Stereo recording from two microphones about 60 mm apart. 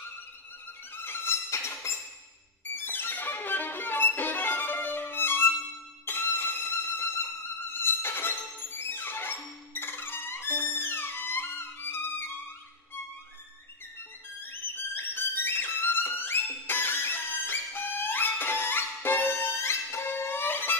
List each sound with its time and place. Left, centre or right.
0.9 s music: left
2.6 s music: left
14.4 s music: left